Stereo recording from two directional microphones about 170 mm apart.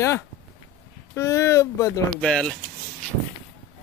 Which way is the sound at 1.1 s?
15° left (ahead or behind).